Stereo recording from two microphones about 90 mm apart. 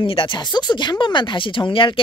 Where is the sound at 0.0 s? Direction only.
75° left (ahead or behind).